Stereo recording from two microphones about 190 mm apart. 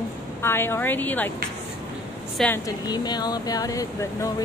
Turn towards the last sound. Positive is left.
turn(degrees=20)  # may be behind; listen again after turning